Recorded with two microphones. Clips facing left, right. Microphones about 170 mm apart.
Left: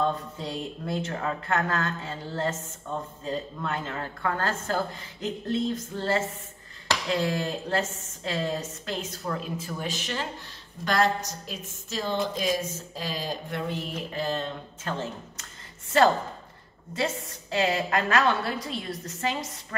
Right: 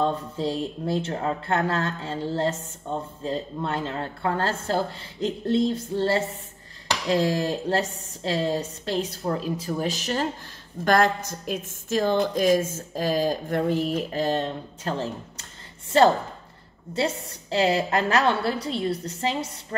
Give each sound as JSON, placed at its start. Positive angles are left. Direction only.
{"t": 0.0, "sound": "speech", "side_deg": -30}
{"t": 16.9, "sound": "a woman's voice", "side_deg": -30}